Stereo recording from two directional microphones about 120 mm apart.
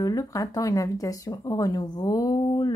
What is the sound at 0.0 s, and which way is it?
Speech, 30° left (ahead or behind).